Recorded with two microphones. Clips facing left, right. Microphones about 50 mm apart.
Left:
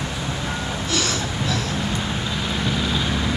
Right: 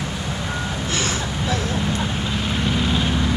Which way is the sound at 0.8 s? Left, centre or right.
Right.